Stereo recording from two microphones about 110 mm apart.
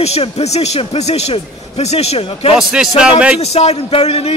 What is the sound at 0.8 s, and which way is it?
A man's voice, 70° left (ahead or behind).